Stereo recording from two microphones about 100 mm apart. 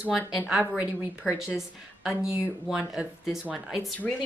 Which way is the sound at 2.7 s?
10° right (ahead or behind).